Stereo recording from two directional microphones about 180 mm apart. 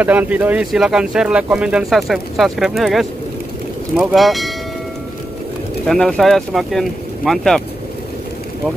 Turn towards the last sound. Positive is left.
turn(degrees=0)  # may be behind; listen again after turning